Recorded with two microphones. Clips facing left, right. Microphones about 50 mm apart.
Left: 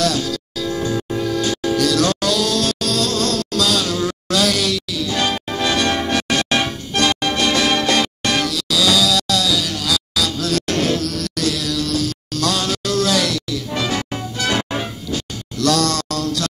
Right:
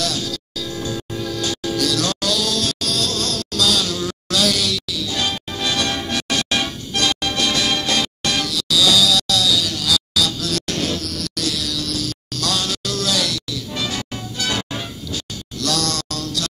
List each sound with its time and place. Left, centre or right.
0.0 s music: left